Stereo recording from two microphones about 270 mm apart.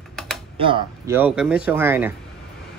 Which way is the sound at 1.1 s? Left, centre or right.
Centre.